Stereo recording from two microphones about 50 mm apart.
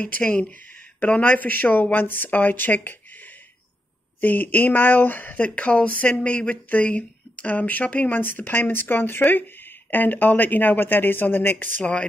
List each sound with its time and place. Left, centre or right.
0.0 s speech: left
11.8 s speech: left